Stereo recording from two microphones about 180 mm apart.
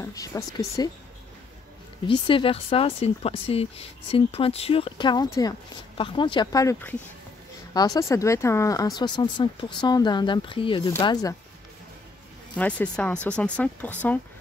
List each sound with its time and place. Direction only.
0.0 s speech: 20° left (ahead or behind)
2.0 s speech: 30° left (ahead or behind)
12.5 s speech: 5° left (ahead or behind)